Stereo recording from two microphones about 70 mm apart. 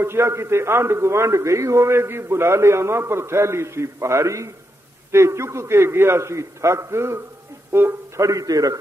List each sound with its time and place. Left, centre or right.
0.0 s a man's voice: right
8.2 s a man's voice: right